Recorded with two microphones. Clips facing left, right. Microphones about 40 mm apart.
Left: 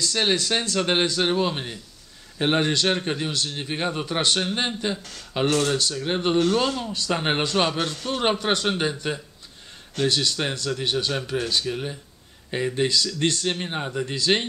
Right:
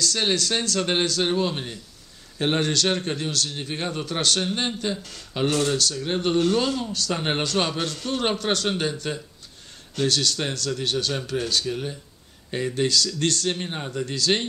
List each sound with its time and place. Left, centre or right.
0.0 s speech: centre